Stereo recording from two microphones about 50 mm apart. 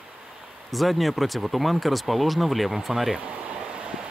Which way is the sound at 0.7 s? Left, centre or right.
Centre.